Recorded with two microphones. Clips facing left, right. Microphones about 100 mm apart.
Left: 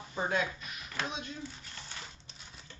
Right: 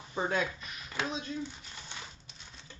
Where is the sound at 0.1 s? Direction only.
20° right (ahead or behind).